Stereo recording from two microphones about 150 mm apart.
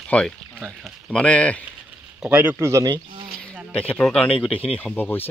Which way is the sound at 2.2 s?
10° right (ahead or behind).